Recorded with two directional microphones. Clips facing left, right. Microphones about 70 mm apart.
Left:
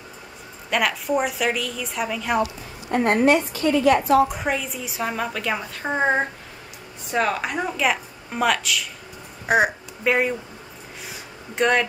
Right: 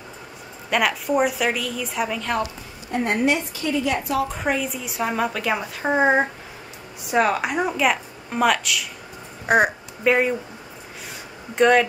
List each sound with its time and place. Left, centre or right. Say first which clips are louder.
0.7 s a woman's voice: right 1 dB; centre
2.9 s a woman's voice: left 4 dB; left
4.4 s a woman's voice: right 2 dB; centre
11.5 s a woman's voice: right 4 dB; centre